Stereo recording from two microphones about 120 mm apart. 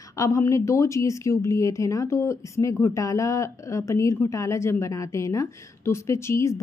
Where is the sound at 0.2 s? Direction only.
25° left (ahead or behind).